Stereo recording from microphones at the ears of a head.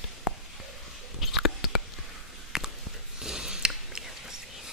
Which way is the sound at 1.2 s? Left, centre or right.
Left.